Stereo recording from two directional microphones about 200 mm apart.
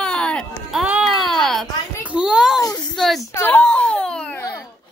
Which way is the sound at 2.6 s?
20° left (ahead or behind).